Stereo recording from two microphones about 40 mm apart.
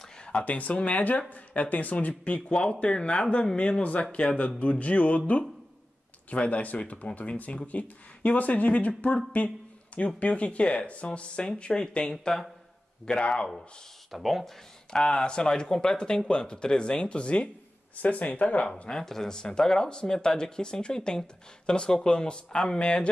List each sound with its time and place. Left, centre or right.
0.2 s a sound: left
0.5 s speech: left
2.7 s speech: left
12.1 s speech: centre
13.1 s speech: left
14.1 s speech: centre
15.0 s speech: left
18.0 s speech: left
18.9 s speech: centre